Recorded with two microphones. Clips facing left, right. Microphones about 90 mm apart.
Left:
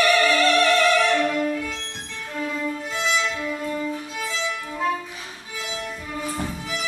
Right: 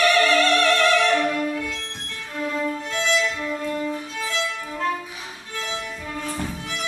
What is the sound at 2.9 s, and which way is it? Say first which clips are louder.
Violin: right 1 dB; 5° left (ahead or behind).